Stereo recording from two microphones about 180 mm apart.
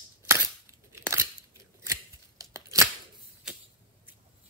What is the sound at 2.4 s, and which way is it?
Tearing, 15° right (ahead or behind).